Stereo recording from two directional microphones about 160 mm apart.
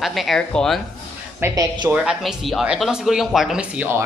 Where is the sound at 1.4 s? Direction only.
25° right (ahead or behind).